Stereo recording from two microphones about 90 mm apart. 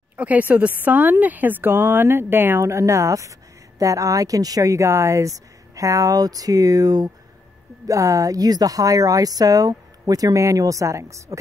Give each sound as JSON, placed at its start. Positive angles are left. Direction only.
{"t": 0.2, "sound": "a woman's voice", "side_deg": -15}